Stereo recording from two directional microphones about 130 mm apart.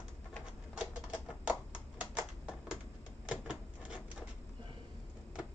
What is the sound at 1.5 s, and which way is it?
Tap, 10° right (ahead or behind).